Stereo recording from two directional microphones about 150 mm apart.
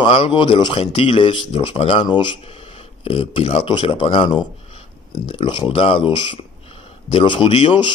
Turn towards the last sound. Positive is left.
turn(degrees=35)  # may be behind; listen again after turning